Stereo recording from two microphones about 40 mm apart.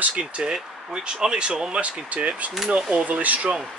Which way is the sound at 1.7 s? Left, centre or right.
Right.